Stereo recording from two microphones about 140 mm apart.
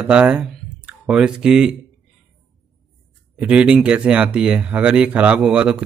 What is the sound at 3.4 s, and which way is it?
Speech, 10° right (ahead or behind).